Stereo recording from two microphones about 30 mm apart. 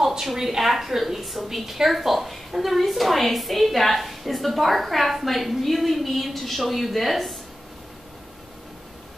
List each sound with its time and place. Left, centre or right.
0.2 s a woman's voice: centre